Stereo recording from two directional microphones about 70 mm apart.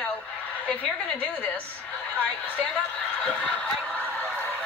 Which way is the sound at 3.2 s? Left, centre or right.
Centre.